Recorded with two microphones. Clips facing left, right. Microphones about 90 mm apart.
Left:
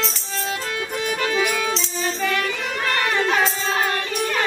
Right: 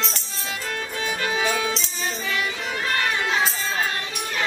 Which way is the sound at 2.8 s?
60° left (ahead or behind).